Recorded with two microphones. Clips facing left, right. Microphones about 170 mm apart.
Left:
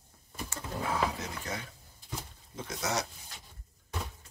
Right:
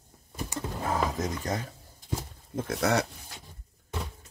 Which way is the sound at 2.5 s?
55° right (ahead or behind).